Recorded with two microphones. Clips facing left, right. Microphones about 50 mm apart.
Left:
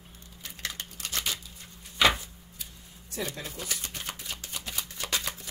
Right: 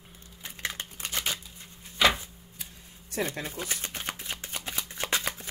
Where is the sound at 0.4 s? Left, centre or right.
Right.